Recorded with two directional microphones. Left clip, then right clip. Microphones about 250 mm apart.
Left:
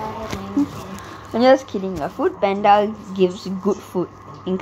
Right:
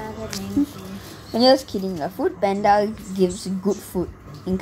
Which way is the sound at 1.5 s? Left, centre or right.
Centre.